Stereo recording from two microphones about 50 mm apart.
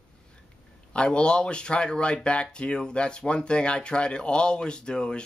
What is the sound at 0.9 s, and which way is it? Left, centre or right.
Speech, centre.